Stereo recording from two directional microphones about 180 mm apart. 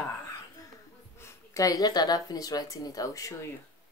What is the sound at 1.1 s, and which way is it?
Speech, 15° left (ahead or behind).